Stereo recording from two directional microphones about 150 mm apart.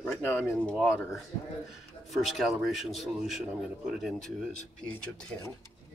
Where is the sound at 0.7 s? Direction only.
5° left (ahead or behind).